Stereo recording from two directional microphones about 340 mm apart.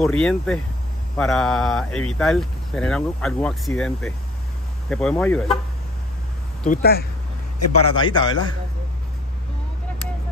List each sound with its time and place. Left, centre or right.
0.0 s speech: centre
6.7 s speech: left
7.5 s a man's voice: left
7.9 s a man's voice: centre